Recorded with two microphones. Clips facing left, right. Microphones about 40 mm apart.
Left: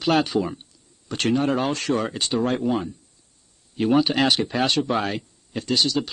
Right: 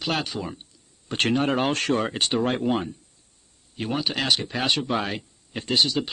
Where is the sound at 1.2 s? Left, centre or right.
Right.